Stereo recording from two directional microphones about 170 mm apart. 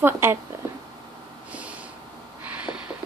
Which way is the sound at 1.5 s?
5° right (ahead or behind).